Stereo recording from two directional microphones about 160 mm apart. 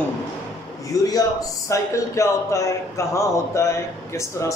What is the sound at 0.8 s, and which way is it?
A man's voice, 20° left (ahead or behind).